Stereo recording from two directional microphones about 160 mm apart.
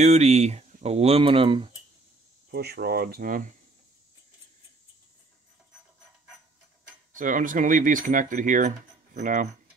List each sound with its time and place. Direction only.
0.0 s speech: 45° right (ahead or behind)
2.5 s speech: 85° right; by 3.4 s 65° right (ahead or behind)
7.2 s speech: 55° right (ahead or behind)